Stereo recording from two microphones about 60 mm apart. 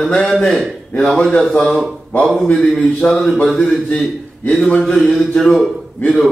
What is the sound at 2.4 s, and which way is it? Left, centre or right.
Speech, centre.